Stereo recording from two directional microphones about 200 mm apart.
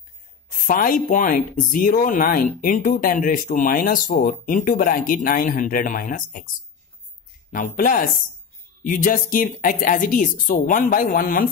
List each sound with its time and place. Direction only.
0.7 s speech: 45° left (ahead or behind)
7.5 s speech: 40° left (ahead or behind)